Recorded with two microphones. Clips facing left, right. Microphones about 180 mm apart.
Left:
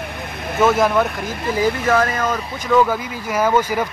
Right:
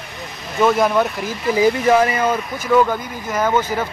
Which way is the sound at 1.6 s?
10° right (ahead or behind).